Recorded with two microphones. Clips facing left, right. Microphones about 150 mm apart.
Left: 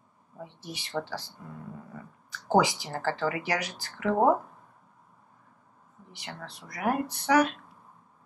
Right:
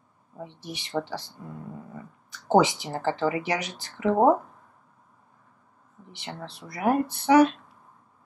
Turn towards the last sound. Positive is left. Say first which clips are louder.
# right 5 dB
turn(degrees=-25)  # may be behind; listen again after turning